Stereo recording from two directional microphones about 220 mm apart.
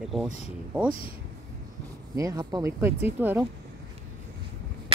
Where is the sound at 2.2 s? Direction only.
15° right (ahead or behind).